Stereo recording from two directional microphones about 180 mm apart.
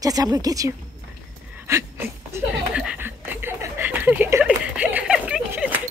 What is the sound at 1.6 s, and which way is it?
Chuckle, 15° right (ahead or behind).